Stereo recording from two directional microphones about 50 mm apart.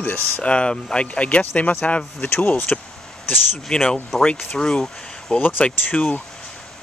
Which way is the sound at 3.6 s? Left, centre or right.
Centre.